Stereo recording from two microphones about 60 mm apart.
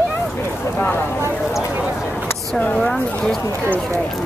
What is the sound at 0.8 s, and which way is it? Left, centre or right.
Speech, left.